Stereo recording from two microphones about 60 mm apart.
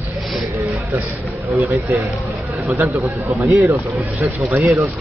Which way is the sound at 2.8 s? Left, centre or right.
Right.